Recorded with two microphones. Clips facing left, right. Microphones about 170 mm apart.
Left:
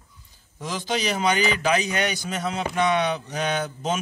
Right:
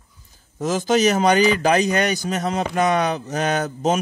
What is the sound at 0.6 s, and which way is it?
A man's voice, 45° right (ahead or behind).